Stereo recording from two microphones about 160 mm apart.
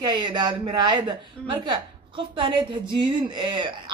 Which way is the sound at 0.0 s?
30° right (ahead or behind).